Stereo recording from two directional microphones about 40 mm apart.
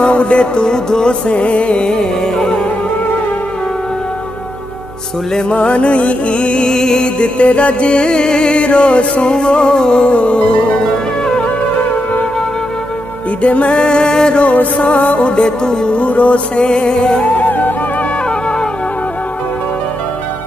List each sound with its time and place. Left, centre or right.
0.0 s music: left
1.2 s music: left; by 2.6 s centre
5.5 s music: left
13.4 s music: left
14.4 s music: left; by 16.0 s centre
16.0 s music: left
17.4 s music: left